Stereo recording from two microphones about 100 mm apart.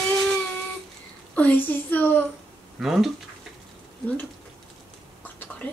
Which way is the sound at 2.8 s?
Centre (ahead or behind).